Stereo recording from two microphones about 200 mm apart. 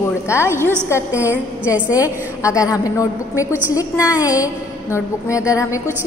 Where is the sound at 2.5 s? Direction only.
15° left (ahead or behind).